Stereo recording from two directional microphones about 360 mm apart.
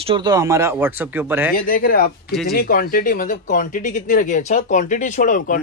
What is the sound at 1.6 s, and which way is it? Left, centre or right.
Speech, left.